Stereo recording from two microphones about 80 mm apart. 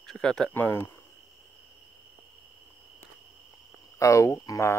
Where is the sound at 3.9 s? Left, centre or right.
Left.